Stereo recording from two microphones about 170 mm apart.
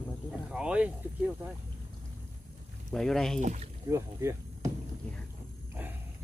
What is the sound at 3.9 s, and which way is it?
Speech, 15° right (ahead or behind).